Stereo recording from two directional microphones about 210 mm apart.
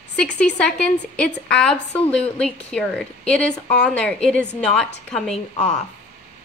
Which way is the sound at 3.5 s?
35° left (ahead or behind).